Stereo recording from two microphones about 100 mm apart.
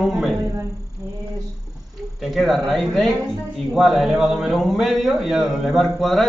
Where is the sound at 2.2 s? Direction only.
Centre (ahead or behind).